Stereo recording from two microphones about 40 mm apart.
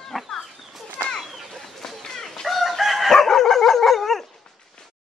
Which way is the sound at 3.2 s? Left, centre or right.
Centre.